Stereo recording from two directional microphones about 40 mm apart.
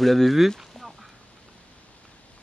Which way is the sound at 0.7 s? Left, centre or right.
Centre.